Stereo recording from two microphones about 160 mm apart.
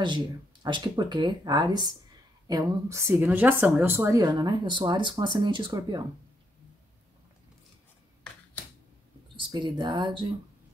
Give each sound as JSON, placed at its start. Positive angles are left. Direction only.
{"t": 0.0, "sound": "a woman's voice", "side_deg": -30}
{"t": 9.5, "sound": "a woman's voice", "side_deg": -30}